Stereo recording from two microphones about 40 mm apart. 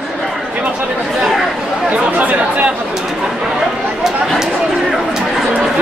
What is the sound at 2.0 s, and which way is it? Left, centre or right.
Speech, right.